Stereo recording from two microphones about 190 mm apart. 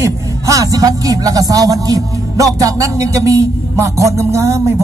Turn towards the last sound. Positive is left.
turn(degrees=-15)  # may be behind; listen again after turning